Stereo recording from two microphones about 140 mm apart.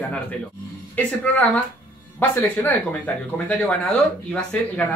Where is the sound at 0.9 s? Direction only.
10° left (ahead or behind).